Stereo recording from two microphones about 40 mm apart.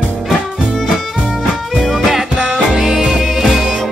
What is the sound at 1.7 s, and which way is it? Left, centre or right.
Music, centre.